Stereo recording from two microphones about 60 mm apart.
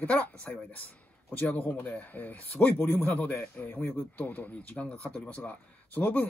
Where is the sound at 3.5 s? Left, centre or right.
Left.